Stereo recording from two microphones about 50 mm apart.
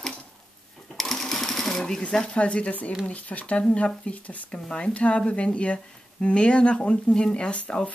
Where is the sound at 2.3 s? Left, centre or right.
Left.